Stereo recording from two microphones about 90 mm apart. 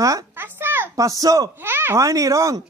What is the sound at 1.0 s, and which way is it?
Speech, 40° right (ahead or behind).